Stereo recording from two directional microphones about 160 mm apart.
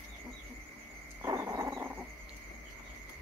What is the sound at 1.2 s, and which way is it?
Frog, 20° right (ahead or behind).